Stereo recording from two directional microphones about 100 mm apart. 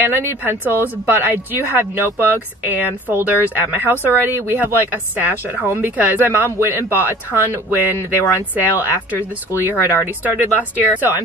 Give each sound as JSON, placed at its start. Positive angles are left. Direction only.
{"t": 0.0, "sound": "speech", "side_deg": -20}
{"t": 8.2, "sound": "speech", "side_deg": 30}
{"t": 9.6, "sound": "speech", "side_deg": -20}